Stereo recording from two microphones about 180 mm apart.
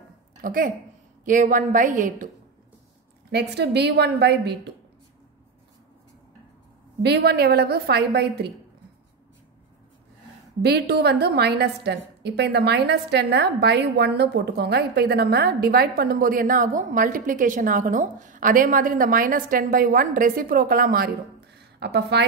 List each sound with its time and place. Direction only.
0.4 s a woman's voice: 50° right (ahead or behind)
3.3 s a woman's voice: 65° right (ahead or behind)
7.0 s a woman's voice: 70° right (ahead or behind)
10.6 s a woman's voice: 65° right (ahead or behind)
21.5 s a sound: 65° right (ahead or behind)